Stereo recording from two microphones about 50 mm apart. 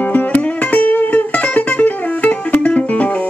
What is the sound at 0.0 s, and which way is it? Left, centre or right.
Music, left.